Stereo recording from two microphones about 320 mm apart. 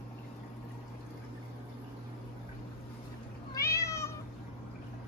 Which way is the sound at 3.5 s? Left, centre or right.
Centre.